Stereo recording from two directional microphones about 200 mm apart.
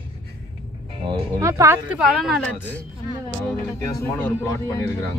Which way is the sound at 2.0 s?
Centre (ahead or behind).